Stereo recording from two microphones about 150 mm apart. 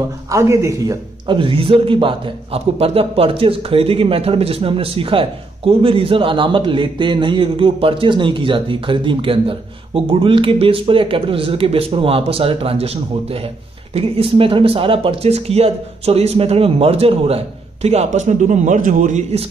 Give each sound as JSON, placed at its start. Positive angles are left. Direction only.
{"t": 0.3, "sound": "speech", "side_deg": -20}
{"t": 1.2, "sound": "a man's voice", "side_deg": -35}